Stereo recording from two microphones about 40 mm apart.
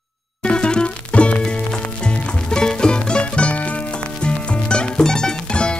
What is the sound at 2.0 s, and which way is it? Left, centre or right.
Music, centre.